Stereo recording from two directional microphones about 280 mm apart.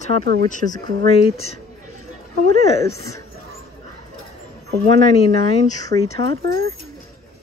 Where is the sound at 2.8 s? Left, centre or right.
Centre.